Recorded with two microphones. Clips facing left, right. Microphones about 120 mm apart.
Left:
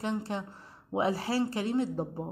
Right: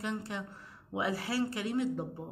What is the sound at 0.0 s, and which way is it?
A woman's voice, 30° left (ahead or behind).